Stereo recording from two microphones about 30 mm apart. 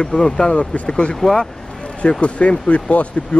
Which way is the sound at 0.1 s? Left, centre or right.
Left.